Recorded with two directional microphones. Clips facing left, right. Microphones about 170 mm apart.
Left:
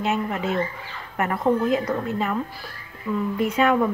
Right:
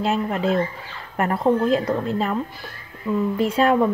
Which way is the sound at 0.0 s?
30° right (ahead or behind).